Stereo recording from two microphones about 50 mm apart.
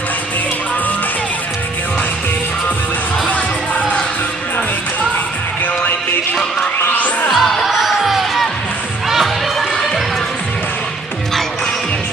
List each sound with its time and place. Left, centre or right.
6.8 s music: left
7.2 s music: centre